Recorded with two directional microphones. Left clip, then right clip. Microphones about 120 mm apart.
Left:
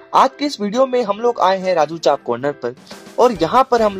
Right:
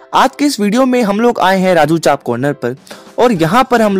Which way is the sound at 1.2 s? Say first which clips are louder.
Right 4 dB; 65° right (ahead or behind).